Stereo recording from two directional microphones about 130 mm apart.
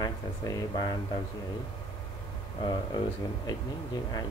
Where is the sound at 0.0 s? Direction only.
30° left (ahead or behind).